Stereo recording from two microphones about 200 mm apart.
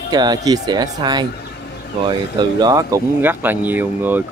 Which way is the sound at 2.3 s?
20° right (ahead or behind).